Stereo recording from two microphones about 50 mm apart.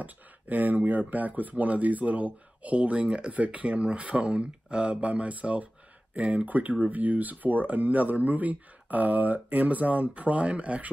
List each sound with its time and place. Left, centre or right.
0.0 s speech: right